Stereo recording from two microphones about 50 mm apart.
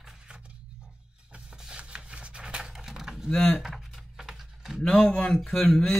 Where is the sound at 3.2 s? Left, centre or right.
Centre.